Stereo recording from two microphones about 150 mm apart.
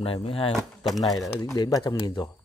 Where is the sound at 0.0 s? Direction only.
40° left (ahead or behind).